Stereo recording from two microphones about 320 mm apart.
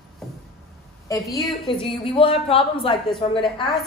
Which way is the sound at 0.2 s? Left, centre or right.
Centre.